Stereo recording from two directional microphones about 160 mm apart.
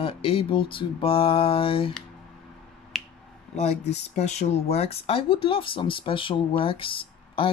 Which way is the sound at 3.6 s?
45° left (ahead or behind).